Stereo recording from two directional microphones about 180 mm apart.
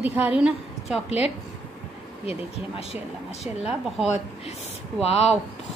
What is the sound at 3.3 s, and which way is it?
Speech, centre (ahead or behind).